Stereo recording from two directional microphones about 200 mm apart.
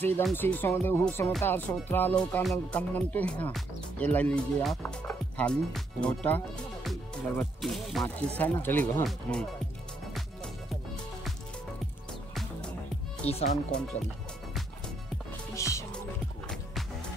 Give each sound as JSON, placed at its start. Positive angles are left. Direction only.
{"t": 0.0, "sound": "speech", "side_deg": 10}
{"t": 10.1, "sound": "music", "side_deg": 0}
{"t": 13.2, "sound": "speech", "side_deg": 30}
{"t": 15.5, "sound": "music", "side_deg": 15}